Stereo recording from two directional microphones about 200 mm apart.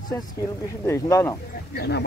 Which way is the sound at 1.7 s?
55° left (ahead or behind).